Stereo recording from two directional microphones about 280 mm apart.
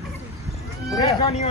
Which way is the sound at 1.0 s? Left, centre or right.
Left.